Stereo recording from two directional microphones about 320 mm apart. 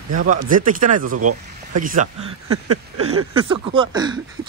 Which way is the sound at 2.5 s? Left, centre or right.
Right.